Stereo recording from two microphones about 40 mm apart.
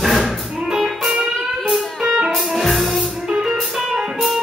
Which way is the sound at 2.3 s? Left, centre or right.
Centre.